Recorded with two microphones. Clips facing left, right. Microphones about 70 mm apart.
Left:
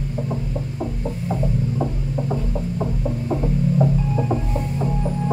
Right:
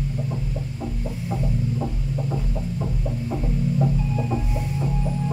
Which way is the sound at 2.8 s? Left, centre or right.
Left.